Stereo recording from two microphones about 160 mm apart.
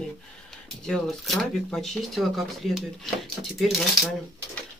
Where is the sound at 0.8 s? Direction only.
Centre (ahead or behind).